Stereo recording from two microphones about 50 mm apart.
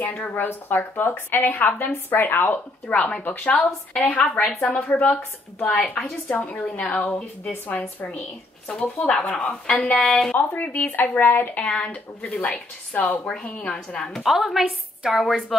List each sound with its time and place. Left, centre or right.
0.0 s a woman's voice: left
1.4 s a woman's voice: left
8.6 s a woman's voice: left
9.1 s speech: centre
10.3 s speech: left
11.6 s a woman's voice: left
13.3 s a woman's voice: left
14.2 s a woman's voice: centre